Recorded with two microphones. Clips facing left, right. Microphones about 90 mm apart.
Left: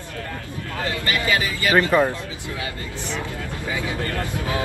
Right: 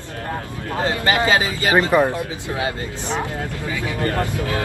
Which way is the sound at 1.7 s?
20° right (ahead or behind).